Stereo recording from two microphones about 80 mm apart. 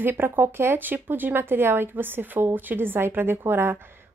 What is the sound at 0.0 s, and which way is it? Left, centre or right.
Speech, right.